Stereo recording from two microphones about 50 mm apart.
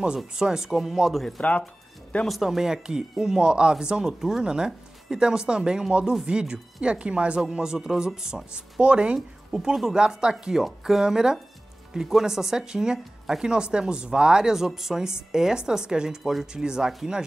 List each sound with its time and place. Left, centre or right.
0.3 s speech: centre
2.2 s speech: centre
16.2 s speech: centre
16.6 s speech: centre